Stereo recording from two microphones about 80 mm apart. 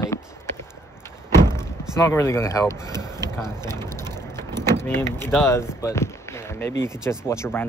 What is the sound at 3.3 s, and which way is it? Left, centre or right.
Vehicle, left.